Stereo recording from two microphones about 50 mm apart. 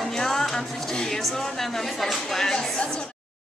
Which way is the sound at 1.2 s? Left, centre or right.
Centre.